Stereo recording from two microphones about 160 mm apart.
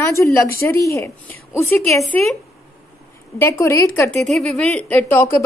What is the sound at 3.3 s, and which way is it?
Speech, 15° left (ahead or behind).